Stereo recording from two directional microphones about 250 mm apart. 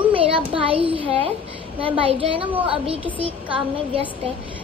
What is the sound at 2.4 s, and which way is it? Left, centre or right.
Speech, centre.